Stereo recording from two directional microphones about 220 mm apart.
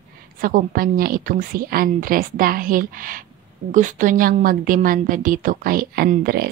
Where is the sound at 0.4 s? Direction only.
40° right (ahead or behind).